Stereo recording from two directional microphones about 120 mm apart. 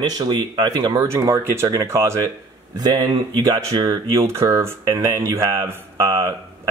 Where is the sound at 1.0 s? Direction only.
25° right (ahead or behind).